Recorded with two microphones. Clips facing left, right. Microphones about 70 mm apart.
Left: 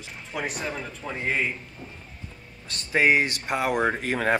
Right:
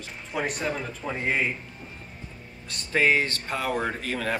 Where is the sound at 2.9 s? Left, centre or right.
Centre.